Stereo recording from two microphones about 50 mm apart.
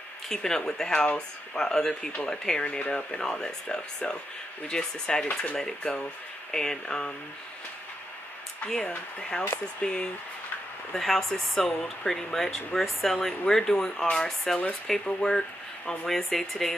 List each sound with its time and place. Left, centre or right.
0.3 s speech: centre
9.8 s speech: centre
11.0 s speech: centre